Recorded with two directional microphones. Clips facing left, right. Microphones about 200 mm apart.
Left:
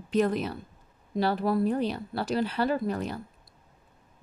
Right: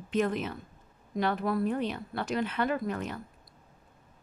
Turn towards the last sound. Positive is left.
turn(degrees=35)  # may be behind; listen again after turning